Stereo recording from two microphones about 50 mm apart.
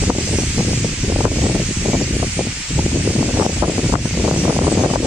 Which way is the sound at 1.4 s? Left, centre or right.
Right.